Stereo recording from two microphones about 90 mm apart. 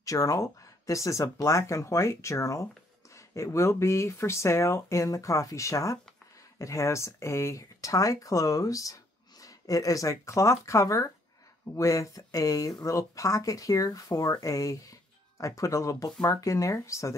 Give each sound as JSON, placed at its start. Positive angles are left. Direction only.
{"t": 0.0, "sound": "speech", "side_deg": 40}